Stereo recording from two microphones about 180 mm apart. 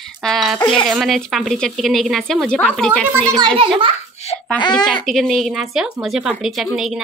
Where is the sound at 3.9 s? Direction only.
35° left (ahead or behind).